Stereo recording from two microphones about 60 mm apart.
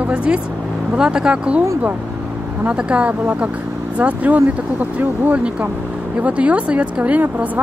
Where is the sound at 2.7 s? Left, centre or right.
Centre.